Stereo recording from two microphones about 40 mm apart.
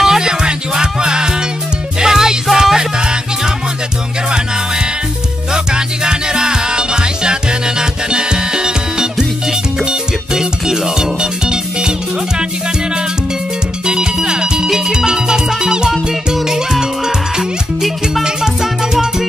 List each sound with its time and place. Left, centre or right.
0.0 s music: centre
5.5 s music: centre
13.8 s music: centre
18.2 s music: centre